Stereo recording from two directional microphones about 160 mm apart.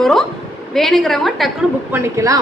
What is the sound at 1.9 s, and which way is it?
Speech, 15° right (ahead or behind).